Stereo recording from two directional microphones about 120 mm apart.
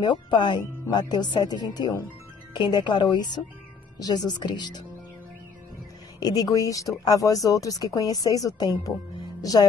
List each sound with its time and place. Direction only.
0.0 s speech: 40° left (ahead or behind)
6.1 s speech: 30° left (ahead or behind)
9.4 s music: 30° left (ahead or behind)